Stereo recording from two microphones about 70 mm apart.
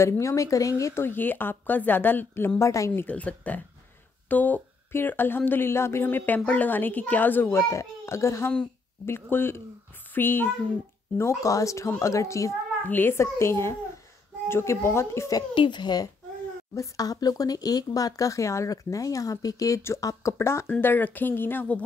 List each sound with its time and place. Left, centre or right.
0.0 s speech: left
1.0 s speech: left
2.6 s speech: left
3.1 s speech: left
7.5 s a child's voice: left
11.1 s speech: left
12.8 s a child's voice: left
15.3 s speech: left
16.7 s speech: left
20.3 s a child's voice: left
20.8 s speech: left